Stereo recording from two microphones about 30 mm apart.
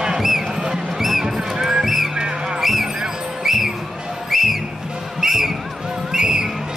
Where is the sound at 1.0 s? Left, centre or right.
Centre.